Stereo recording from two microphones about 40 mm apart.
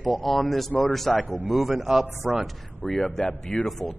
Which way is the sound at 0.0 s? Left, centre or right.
Centre.